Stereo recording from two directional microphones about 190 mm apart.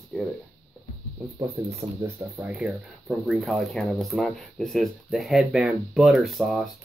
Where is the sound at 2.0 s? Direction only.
15° right (ahead or behind).